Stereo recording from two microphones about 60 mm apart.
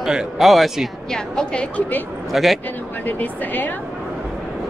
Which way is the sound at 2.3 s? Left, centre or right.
Centre.